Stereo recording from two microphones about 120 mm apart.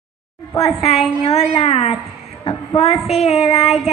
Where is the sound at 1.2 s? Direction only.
55° left (ahead or behind).